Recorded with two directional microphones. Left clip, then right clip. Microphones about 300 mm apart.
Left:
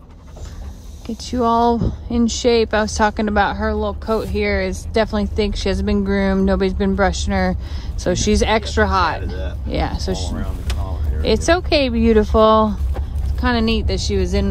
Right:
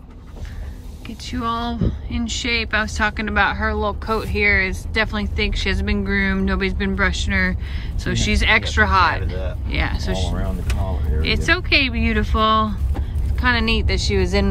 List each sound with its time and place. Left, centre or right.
1.0 s speech: centre